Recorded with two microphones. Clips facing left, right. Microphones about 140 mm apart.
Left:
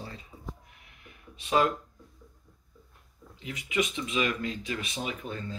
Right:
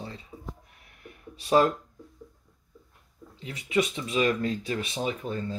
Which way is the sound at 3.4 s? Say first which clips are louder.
Right 3 dB; 35° right (ahead or behind).